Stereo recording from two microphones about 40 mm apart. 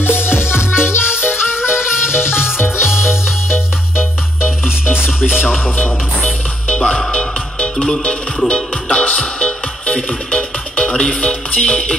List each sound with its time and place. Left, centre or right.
0.0 s music: left
6.2 s music: centre
9.0 s music: left